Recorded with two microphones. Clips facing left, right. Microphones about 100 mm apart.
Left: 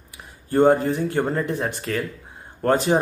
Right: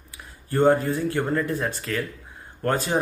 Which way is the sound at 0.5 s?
20° left (ahead or behind).